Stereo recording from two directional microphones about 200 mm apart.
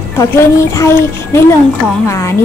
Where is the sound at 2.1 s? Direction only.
15° left (ahead or behind).